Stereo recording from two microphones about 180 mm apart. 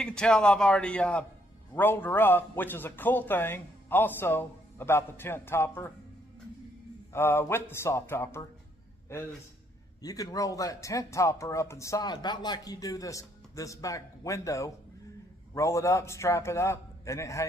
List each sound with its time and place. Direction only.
0.0 s a man's voice: 5° left (ahead or behind)
7.1 s speech: 15° left (ahead or behind)
10.0 s speech: 20° left (ahead or behind)